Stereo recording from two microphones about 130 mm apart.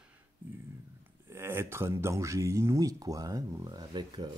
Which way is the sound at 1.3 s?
20° right (ahead or behind).